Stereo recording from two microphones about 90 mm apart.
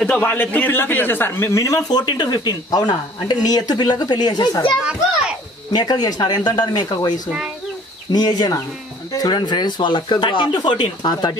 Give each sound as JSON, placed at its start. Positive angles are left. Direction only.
{"t": 0.1, "sound": "a man's voice", "side_deg": 20}